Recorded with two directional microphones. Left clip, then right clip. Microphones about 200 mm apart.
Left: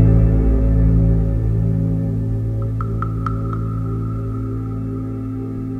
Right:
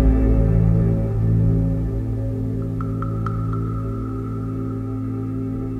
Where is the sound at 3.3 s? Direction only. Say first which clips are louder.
Left 6 dB; centre (ahead or behind).